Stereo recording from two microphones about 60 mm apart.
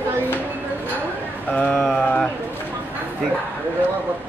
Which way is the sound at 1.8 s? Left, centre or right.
Centre.